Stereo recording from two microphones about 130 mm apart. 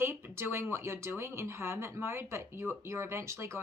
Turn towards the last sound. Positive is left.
turn(degrees=-20)  # may be behind; listen again after turning